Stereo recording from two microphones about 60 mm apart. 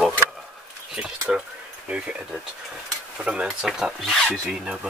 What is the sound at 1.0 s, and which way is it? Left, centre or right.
Speech, centre.